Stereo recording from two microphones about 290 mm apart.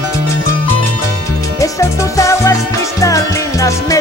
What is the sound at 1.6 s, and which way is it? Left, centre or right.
Music, centre.